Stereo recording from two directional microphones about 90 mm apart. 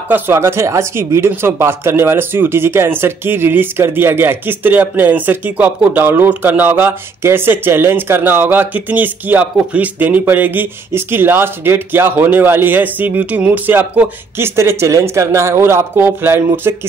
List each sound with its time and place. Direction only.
0.1 s speech: 25° right (ahead or behind)